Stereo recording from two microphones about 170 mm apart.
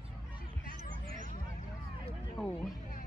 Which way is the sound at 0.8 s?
50° right (ahead or behind).